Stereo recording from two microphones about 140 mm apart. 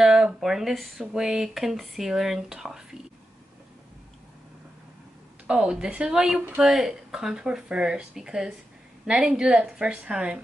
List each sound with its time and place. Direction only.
0.0 s speech: 5° right (ahead or behind)
5.5 s a woman's voice: 5° right (ahead or behind)